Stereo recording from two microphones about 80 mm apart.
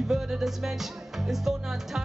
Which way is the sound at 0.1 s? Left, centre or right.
Centre.